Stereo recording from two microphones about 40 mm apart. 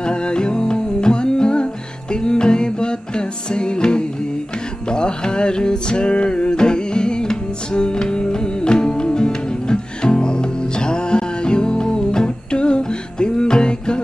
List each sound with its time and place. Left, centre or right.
0.0 s music: left